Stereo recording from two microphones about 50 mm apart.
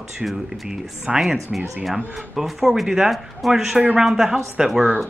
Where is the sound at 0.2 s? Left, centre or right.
Centre.